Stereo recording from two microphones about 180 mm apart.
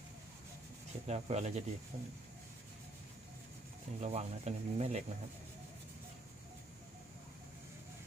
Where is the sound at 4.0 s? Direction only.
40° right (ahead or behind).